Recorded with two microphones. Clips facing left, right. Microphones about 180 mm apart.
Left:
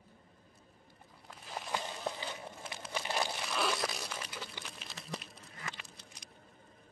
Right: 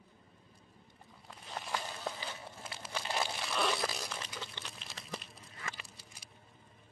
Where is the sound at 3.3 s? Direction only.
Centre (ahead or behind).